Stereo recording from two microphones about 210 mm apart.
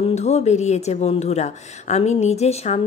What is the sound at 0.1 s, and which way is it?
Speech, 30° left (ahead or behind).